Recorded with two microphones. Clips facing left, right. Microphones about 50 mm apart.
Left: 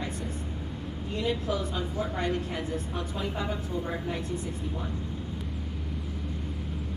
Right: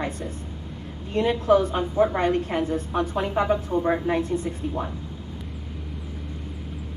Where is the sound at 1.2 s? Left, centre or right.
Right.